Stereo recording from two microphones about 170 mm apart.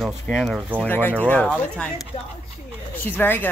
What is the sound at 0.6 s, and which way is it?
Speech, 10° right (ahead or behind).